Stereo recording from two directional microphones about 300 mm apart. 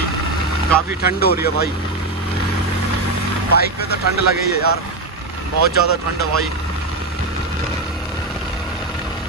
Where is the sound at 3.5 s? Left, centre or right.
Left.